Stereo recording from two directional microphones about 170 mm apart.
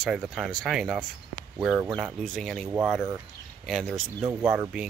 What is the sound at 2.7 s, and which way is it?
Speech, 10° right (ahead or behind).